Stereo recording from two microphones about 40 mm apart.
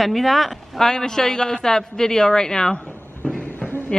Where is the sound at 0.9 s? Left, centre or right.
Centre.